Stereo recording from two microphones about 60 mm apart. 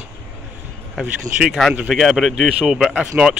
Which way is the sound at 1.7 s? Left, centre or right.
Centre.